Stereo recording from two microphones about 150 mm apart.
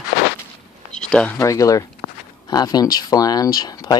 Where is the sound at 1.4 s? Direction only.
20° left (ahead or behind).